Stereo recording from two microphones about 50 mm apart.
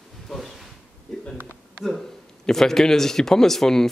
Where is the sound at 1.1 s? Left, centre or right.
Centre.